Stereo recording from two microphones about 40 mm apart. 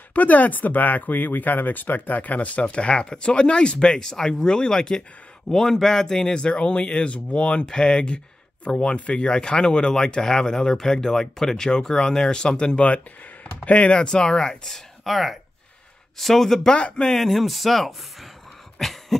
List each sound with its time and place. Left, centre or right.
0.1 s speech: left
2.7 s speech: left
14.0 s speech: centre
15.0 s speech: centre
16.7 s speech: left
17.1 s speech: centre
18.8 s a sound: centre